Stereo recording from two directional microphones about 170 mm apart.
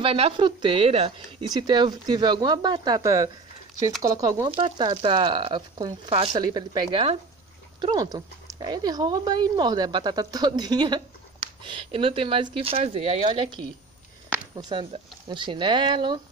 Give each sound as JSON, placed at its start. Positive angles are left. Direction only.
{"t": 0.0, "sound": "speech", "side_deg": -35}
{"t": 1.5, "sound": "speech", "side_deg": -25}
{"t": 4.6, "sound": "speech", "side_deg": -30}
{"t": 14.5, "sound": "speech", "side_deg": -25}